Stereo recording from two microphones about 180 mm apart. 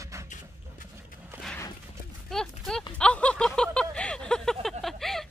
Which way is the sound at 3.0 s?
5° left (ahead or behind).